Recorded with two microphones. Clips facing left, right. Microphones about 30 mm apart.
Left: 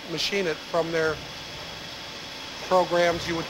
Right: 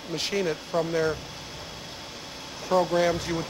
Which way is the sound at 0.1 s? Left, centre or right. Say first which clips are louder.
Left 1 dB; centre.